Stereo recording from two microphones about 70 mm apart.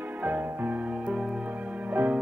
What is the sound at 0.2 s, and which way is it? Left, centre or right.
Music, right.